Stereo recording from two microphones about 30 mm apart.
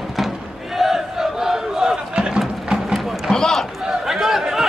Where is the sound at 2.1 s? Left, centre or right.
Right.